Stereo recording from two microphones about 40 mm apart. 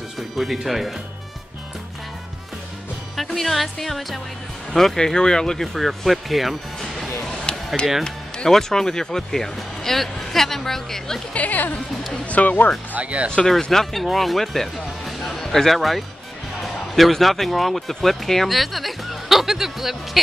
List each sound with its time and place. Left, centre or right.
0.4 s speech: centre
3.2 s speech: centre
5.8 s music: centre
8.5 s speech: centre
11.3 s speech: left
12.9 s speech: right
13.6 s speech: centre